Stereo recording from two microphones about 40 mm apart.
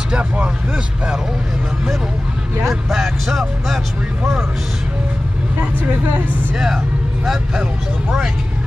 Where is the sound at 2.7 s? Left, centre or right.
Centre.